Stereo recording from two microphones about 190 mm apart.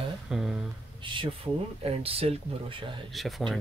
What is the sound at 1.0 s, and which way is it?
Speech, 25° right (ahead or behind).